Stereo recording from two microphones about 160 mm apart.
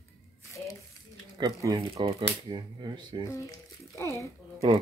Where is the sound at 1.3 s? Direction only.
25° right (ahead or behind).